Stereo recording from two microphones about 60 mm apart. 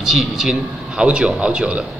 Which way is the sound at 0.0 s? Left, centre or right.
Centre.